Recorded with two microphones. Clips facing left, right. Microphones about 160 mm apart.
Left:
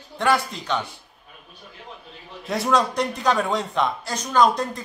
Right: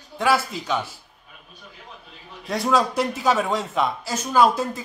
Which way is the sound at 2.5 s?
Centre (ahead or behind).